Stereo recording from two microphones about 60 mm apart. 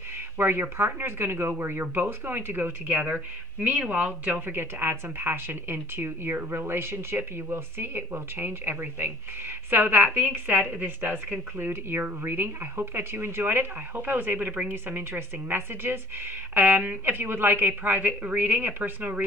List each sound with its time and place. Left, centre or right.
0.4 s a woman's voice: right
16.5 s a woman's voice: right